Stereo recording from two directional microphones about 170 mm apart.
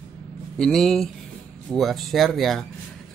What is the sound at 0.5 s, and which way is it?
A man's voice, 5° left (ahead or behind).